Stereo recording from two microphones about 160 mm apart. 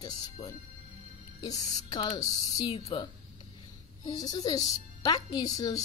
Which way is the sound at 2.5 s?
35° left (ahead or behind).